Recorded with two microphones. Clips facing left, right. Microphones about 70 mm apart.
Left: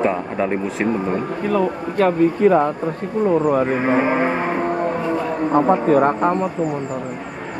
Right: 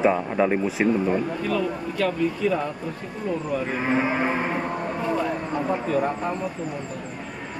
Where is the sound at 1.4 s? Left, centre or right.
Left.